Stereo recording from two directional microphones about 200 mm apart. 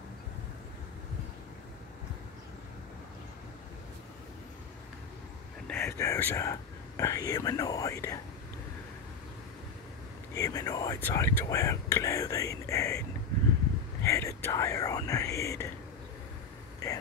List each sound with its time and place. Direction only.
5.7 s speech: 10° left (ahead or behind)
10.3 s speech: 15° left (ahead or behind)
14.0 s speech: 15° left (ahead or behind)